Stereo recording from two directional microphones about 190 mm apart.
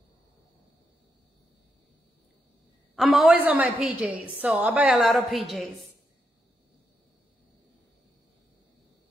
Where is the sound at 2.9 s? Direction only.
Centre (ahead or behind).